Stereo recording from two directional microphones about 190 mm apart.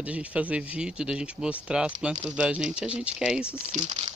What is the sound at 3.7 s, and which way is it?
Speech, 35° right (ahead or behind).